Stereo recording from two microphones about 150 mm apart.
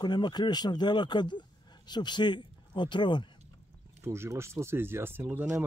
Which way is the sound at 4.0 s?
15° right (ahead or behind).